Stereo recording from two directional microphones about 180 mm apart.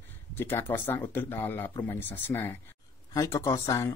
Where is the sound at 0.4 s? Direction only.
10° left (ahead or behind).